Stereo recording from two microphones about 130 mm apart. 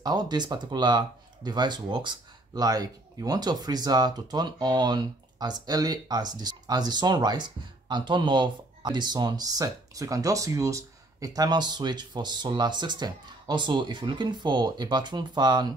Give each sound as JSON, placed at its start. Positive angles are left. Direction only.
{"t": 0.0, "sound": "speech", "side_deg": -30}